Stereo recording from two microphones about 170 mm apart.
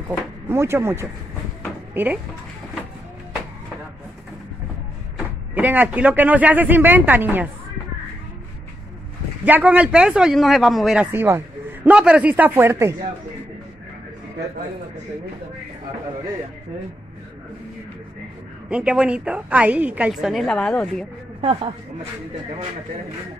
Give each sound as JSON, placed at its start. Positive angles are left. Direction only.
{"t": 0.5, "sound": "speech", "side_deg": -15}
{"t": 5.5, "sound": "speech", "side_deg": -10}
{"t": 9.4, "sound": "speech", "side_deg": -10}
{"t": 18.7, "sound": "a woman's voice", "side_deg": -5}
{"t": 21.4, "sound": "speech", "side_deg": -30}